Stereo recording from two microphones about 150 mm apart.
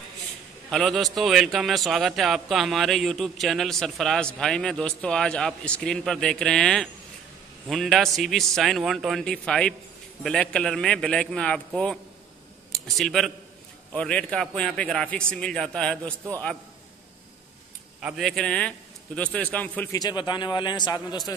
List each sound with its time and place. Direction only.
0.7 s a man's voice: centre (ahead or behind)
18.0 s a man's voice: centre (ahead or behind)
19.9 s a man's voice: 25° left (ahead or behind)